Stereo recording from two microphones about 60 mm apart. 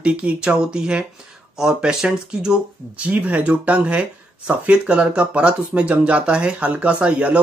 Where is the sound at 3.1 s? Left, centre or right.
Right.